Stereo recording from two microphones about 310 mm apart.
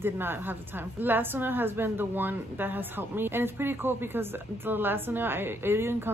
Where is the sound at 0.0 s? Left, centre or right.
Centre.